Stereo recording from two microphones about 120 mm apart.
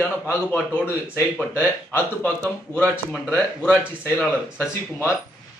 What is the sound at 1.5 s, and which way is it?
Speech, 15° left (ahead or behind).